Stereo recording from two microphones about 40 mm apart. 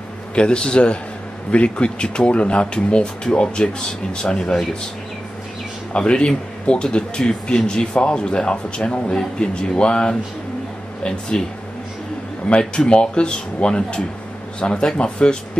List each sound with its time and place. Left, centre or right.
0.3 s speech: left
5.9 s speech: left
12.4 s speech: left